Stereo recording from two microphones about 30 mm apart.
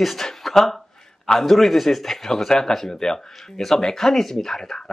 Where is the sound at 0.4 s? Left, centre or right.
Centre.